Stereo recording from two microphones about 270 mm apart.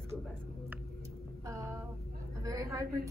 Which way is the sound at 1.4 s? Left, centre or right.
Centre.